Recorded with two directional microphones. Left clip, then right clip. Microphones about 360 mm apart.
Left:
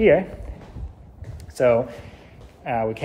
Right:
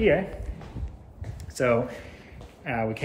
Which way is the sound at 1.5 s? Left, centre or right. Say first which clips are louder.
Left 5 dB; centre.